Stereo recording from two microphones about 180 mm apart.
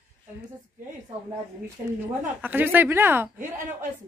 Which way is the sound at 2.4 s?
10° right (ahead or behind).